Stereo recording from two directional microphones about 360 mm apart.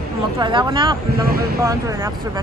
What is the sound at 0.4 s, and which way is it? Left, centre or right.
Speech, centre.